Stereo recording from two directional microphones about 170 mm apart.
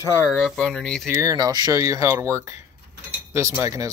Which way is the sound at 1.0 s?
20° right (ahead or behind).